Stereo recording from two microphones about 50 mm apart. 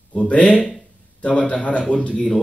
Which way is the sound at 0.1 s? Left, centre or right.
Left.